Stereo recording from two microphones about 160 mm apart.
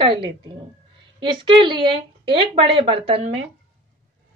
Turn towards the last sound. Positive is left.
turn(degrees=-35)  # may be behind; listen again after turning